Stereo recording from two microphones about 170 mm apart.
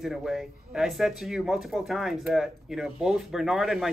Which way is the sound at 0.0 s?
Centre (ahead or behind).